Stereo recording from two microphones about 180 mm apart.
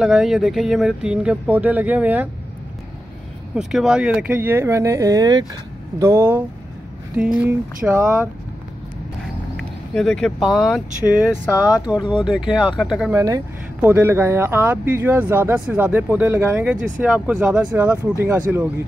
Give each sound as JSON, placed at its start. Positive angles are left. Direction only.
{"t": 0.0, "sound": "speech", "side_deg": -5}
{"t": 3.5, "sound": "speech", "side_deg": -5}
{"t": 9.9, "sound": "speech", "side_deg": 5}
{"t": 11.6, "sound": "speech", "side_deg": 20}
{"t": 12.3, "sound": "speech", "side_deg": 0}
{"t": 13.1, "sound": "speech", "side_deg": -15}